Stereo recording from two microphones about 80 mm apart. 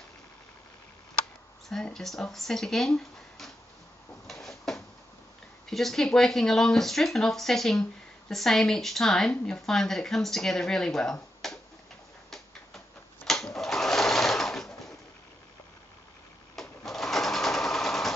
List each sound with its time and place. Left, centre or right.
1.7 s a woman's voice: centre
4.3 s a sound: centre
5.7 s a woman's voice: centre
11.4 s finger snapping: centre
12.3 s sewing machine: centre
16.5 s sewing machine: centre